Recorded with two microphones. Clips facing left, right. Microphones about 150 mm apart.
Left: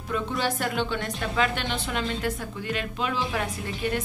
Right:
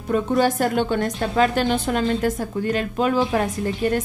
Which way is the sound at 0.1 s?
45° right (ahead or behind).